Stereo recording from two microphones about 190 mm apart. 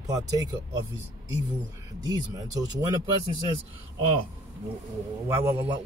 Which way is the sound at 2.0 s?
20° right (ahead or behind).